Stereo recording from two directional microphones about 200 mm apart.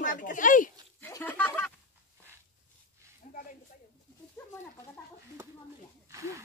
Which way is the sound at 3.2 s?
40° left (ahead or behind).